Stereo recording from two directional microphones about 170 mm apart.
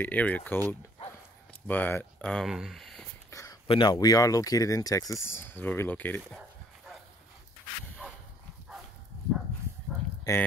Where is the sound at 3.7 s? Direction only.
25° left (ahead or behind); by 6.4 s 10° left (ahead or behind).